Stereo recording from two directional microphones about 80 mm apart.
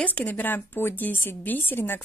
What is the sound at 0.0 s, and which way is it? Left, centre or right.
A woman's voice, centre.